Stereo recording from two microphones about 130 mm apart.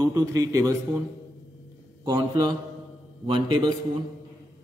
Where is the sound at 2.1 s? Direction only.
30° right (ahead or behind).